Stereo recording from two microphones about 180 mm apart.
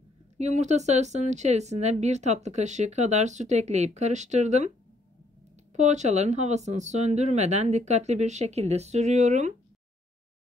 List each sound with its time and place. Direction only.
0.4 s speech: 40° right (ahead or behind)
5.7 s speech: 40° right (ahead or behind)